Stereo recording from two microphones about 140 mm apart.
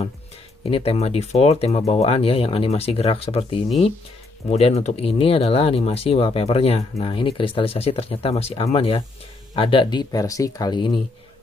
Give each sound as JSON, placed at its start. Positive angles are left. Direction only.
{"t": 0.7, "sound": "speech", "side_deg": 45}